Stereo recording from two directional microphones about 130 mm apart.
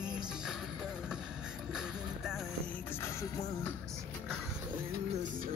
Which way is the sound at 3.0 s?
20° left (ahead or behind).